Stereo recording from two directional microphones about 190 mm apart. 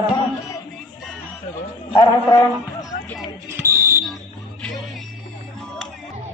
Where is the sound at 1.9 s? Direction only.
20° left (ahead or behind).